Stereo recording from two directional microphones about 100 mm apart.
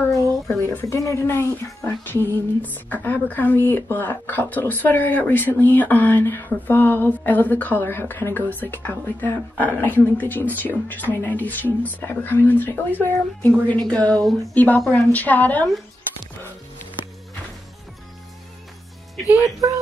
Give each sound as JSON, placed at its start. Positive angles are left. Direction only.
{"t": 0.1, "sound": "a woman's voice", "side_deg": 25}